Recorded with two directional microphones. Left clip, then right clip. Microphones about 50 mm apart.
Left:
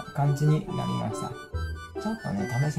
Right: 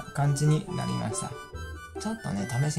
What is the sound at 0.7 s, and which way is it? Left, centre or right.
Speech, left.